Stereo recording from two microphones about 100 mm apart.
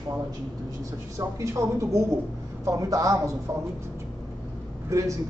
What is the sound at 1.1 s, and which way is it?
A man's voice, 30° right (ahead or behind).